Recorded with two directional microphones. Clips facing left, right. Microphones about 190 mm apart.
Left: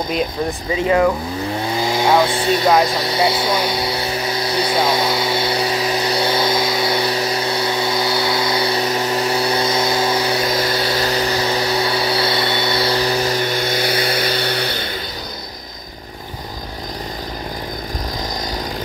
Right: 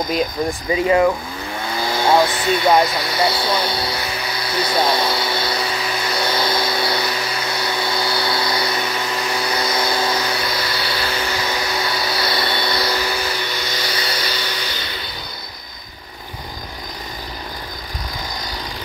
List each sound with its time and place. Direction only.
1.7 s vehicle: 15° left (ahead or behind)
2.2 s speech: 30° left (ahead or behind)
4.6 s speech: 10° left (ahead or behind)
5.6 s vacuum cleaner: 40° left (ahead or behind)
10.4 s vacuum cleaner: 45° left (ahead or behind)